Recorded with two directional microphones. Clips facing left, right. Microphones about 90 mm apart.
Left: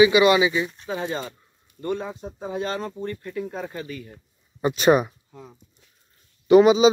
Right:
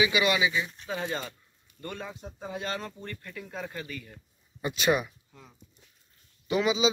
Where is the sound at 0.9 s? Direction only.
15° left (ahead or behind).